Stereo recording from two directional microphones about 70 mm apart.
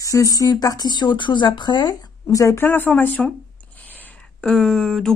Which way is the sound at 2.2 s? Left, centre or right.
Left.